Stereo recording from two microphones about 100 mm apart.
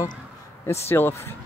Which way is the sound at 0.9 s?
25° left (ahead or behind).